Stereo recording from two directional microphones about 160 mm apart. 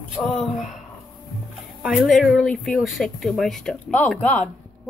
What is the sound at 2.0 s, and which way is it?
Speech, centre (ahead or behind).